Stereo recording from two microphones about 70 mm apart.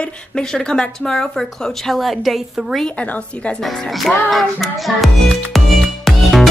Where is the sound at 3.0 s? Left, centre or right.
Centre.